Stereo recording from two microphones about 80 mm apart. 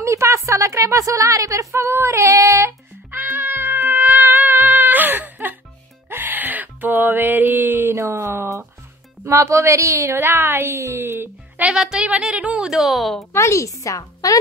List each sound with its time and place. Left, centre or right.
0.0 s a sound: right
6.0 s wail: right
8.0 s a woman's voice: right
11.6 s a woman's voice: centre
13.3 s speech: left